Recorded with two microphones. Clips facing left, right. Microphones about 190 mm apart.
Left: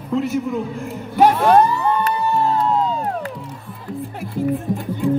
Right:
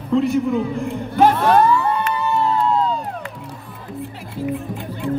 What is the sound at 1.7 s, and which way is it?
Music, 40° left (ahead or behind).